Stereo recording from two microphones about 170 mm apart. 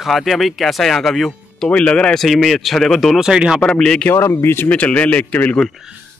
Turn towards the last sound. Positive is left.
turn(degrees=10)  # may be behind; listen again after turning